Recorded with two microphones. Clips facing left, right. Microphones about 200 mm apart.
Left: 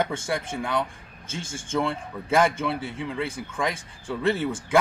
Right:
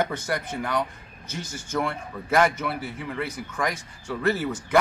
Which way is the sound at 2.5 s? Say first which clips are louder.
Left 2 dB; 25° left (ahead or behind).